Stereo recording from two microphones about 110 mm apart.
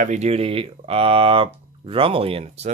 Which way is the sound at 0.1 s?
80° right.